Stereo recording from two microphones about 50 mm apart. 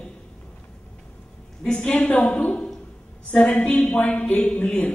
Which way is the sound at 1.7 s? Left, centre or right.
Left.